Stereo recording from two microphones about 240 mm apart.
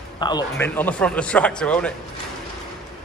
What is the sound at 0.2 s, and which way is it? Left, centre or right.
Speech, centre.